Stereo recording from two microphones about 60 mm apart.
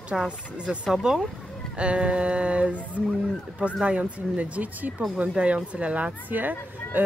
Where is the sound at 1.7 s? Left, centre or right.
Centre.